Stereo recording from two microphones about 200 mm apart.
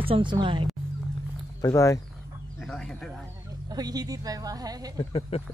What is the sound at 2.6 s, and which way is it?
Speech, 5° left (ahead or behind).